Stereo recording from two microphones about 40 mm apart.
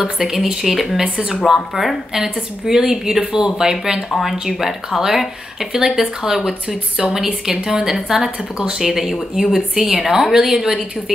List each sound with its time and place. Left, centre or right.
0.0 s speech: centre